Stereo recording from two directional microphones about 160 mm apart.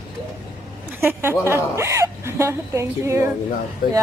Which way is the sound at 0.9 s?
15° right (ahead or behind).